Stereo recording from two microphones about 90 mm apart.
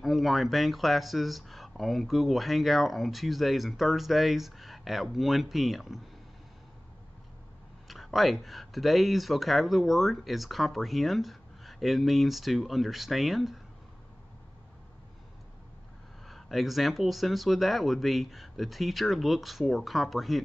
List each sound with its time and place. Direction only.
0.0 s speech: centre (ahead or behind)
7.9 s speech: centre (ahead or behind)
16.3 s speech: centre (ahead or behind)